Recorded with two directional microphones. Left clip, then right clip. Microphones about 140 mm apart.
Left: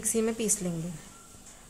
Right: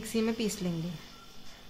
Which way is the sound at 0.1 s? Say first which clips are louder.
Left 3 dB; 10° left (ahead or behind).